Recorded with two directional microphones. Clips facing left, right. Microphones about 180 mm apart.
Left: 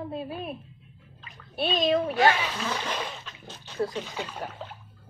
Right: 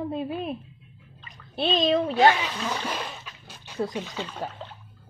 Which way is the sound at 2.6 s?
10° right (ahead or behind).